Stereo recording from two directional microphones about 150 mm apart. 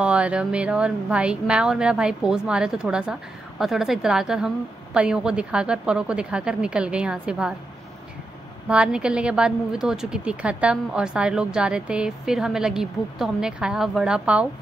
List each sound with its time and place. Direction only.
0.0 s a woman's voice: 5° right (ahead or behind)
8.6 s a woman's voice: 5° right (ahead or behind)